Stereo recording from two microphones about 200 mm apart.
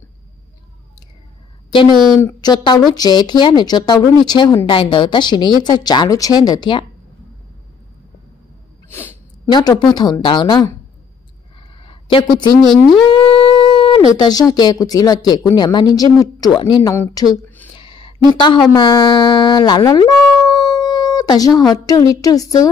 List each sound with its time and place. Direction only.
2.1 s a woman's voice: 15° left (ahead or behind)
9.5 s a woman's voice: 20° left (ahead or behind)
11.8 s a sound: 25° left (ahead or behind)
14.1 s speech: 20° left (ahead or behind)